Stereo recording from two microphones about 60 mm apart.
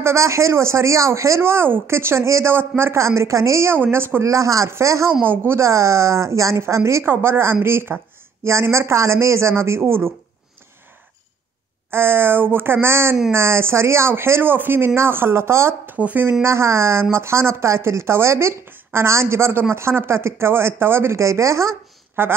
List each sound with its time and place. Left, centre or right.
0.0 s speech: right
1.4 s speech: right
3.7 s speech: right
4.2 s speech: right
11.9 s speech: right
16.0 s speech: right
16.4 s speech: right
22.2 s speech: right